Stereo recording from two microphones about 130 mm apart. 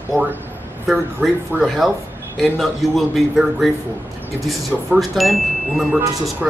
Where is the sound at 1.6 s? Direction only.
Centre (ahead or behind).